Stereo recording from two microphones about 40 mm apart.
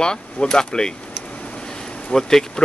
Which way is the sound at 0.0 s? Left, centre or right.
Centre.